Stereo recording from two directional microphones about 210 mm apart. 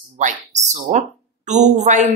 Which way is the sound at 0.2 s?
35° right (ahead or behind).